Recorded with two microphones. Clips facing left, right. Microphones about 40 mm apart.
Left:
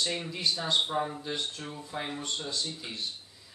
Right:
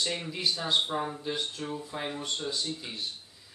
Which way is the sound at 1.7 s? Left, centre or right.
Centre.